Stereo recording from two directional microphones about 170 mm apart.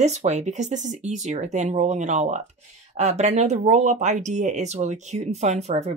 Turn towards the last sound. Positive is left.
turn(degrees=-40)  # may be behind; listen again after turning